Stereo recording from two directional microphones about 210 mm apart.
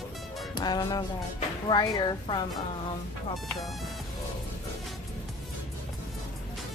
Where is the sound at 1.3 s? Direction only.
20° left (ahead or behind).